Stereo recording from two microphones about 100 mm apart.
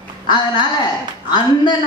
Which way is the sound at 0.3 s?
50° left (ahead or behind).